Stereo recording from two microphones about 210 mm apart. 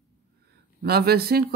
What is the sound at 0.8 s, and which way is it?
Speech, 50° right (ahead or behind).